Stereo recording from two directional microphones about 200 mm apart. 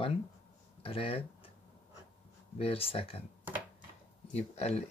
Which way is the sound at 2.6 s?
30° left (ahead or behind).